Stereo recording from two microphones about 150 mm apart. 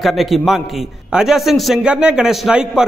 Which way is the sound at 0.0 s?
Centre (ahead or behind).